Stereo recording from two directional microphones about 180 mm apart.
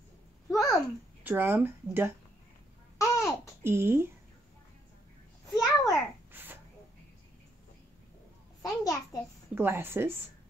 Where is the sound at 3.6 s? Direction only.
15° right (ahead or behind).